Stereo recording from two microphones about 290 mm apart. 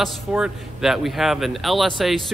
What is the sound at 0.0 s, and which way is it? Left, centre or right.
Speech, centre.